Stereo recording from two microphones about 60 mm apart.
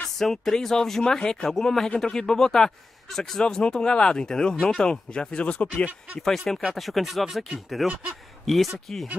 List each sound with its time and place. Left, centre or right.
0.2 s speech: centre
6.7 s speech: centre